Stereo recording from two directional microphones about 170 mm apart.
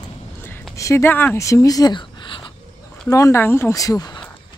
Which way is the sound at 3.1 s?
15° left (ahead or behind).